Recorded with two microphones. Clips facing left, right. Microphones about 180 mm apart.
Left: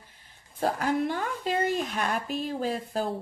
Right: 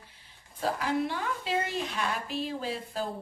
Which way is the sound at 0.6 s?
50° left (ahead or behind).